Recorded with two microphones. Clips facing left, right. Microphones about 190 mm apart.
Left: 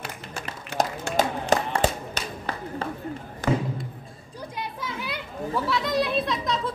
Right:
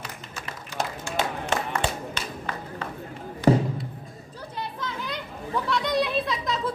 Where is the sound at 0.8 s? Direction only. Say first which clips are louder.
Left 4 dB; 40° left (ahead or behind).